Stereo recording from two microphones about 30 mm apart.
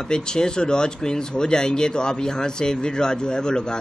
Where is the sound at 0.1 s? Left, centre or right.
Left.